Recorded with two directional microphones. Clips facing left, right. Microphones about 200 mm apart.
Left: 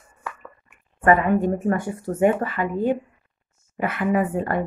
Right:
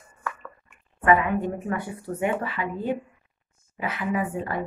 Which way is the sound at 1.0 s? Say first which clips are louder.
Left 4 dB; 45° left (ahead or behind).